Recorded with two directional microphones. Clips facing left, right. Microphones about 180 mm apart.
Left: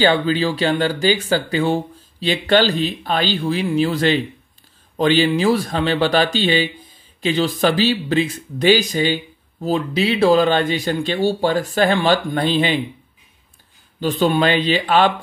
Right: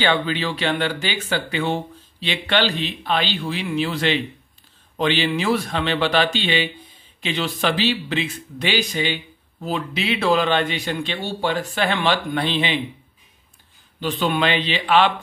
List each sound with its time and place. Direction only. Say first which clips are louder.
0.0 s speech: left 5 dB; 35° left (ahead or behind)
13.9 s speech: left 5 dB; 40° left (ahead or behind)